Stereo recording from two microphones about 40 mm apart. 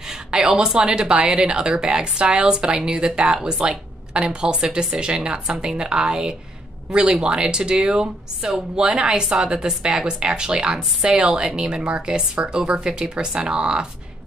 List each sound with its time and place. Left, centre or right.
0.1 s a woman's voice: centre